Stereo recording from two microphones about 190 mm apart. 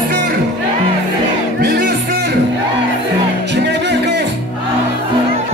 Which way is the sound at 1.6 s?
55° right (ahead or behind).